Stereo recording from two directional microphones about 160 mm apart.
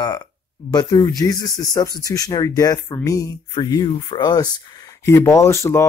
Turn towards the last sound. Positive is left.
turn(degrees=15)  # may be behind; listen again after turning